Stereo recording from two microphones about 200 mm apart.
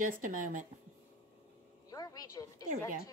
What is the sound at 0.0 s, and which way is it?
Speech, 40° right (ahead or behind).